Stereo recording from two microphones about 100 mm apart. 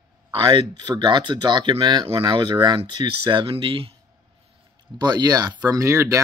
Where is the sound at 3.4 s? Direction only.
65° right (ahead or behind).